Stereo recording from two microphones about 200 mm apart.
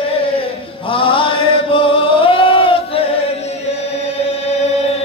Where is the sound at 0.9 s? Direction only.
25° left (ahead or behind).